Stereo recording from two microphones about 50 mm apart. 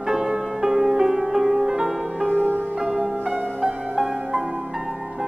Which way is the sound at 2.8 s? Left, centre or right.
Right.